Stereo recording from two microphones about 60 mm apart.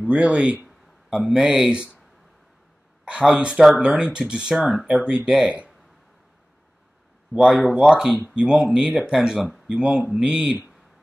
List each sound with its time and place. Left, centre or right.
0.0 s speech: centre
3.1 s speech: centre
4.6 s speech: centre
4.9 s speech: centre
7.3 s speech: centre